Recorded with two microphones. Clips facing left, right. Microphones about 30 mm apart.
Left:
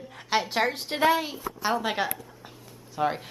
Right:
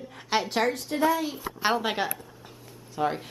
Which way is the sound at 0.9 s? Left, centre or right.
Left.